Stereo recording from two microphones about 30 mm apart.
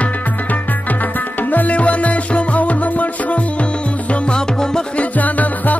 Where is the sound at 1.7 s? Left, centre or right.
Left.